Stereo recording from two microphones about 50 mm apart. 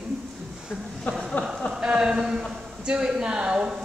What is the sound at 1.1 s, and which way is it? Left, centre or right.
Speech, left.